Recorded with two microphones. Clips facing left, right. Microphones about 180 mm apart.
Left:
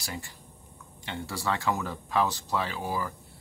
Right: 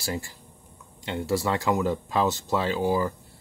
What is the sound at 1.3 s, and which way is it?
Speech, 20° right (ahead or behind).